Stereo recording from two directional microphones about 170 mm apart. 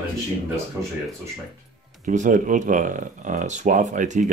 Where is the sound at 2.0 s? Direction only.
50° right (ahead or behind).